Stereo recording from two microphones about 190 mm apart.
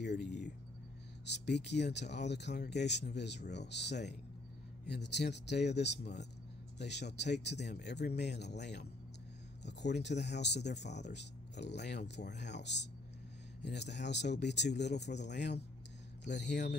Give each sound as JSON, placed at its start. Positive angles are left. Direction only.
{"t": 0.0, "sound": "a sound", "side_deg": 65}
{"t": 1.2, "sound": "speech", "side_deg": 65}
{"t": 16.3, "sound": "speech", "side_deg": 40}